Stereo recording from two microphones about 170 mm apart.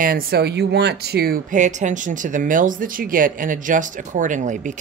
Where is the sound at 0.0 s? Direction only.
60° right (ahead or behind).